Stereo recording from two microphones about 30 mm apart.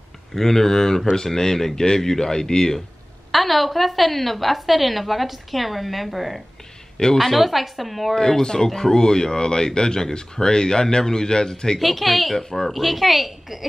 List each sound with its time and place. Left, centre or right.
0.3 s speech: centre
3.3 s a woman's voice: centre
8.1 s speech: centre
11.8 s a woman's voice: centre
12.4 s speech: centre
12.7 s a woman's voice: centre